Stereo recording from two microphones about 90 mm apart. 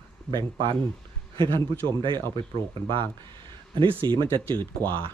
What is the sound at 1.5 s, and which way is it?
Speech, 30° left (ahead or behind).